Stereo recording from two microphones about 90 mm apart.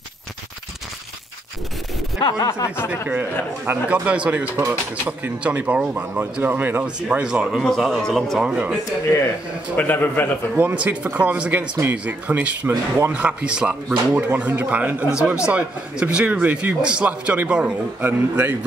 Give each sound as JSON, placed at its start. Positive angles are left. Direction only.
{"t": 2.1, "sound": "speech", "side_deg": 50}
{"t": 3.1, "sound": "a man's voice", "side_deg": -20}
{"t": 4.6, "sound": "speech", "side_deg": -25}
{"t": 7.6, "sound": "a man's voice", "side_deg": 0}
{"t": 8.5, "sound": "speech", "side_deg": -15}
{"t": 9.8, "sound": "a man's voice", "side_deg": 20}
{"t": 10.5, "sound": "speech", "side_deg": -15}
{"t": 18.0, "sound": "a man's voice", "side_deg": -25}